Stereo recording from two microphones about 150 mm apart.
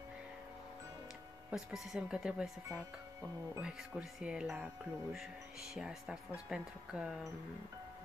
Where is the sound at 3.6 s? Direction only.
5° right (ahead or behind).